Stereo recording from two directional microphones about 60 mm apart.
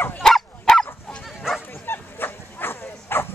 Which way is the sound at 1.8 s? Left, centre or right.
Left.